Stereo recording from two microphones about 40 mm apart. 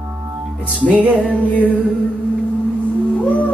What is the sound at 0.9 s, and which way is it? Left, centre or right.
Music, right.